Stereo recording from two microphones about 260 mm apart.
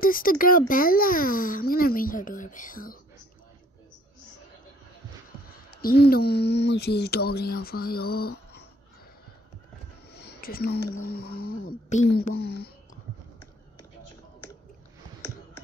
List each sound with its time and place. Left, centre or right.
0.0 s speech: left
5.8 s speech: left
10.1 s a sound: left
11.1 s speech: left